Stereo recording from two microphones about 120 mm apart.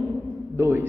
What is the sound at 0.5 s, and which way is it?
Speech, 20° right (ahead or behind).